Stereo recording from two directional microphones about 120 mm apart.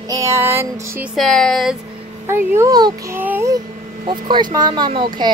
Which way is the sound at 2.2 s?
20° right (ahead or behind).